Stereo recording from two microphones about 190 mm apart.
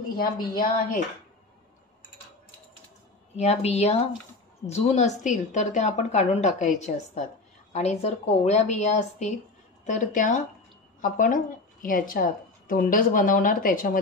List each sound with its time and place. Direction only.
0.2 s speech: 50° left (ahead or behind)
3.3 s a woman's voice: 35° left (ahead or behind)
7.7 s a woman's voice: 35° left (ahead or behind)